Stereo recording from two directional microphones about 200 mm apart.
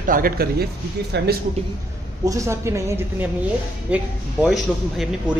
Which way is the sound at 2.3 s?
15° right (ahead or behind).